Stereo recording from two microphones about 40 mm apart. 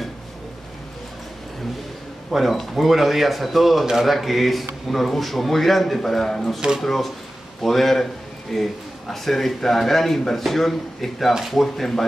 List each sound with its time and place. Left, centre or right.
2.3 s speech: centre